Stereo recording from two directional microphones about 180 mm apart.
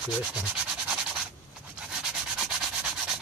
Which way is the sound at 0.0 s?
5° right (ahead or behind).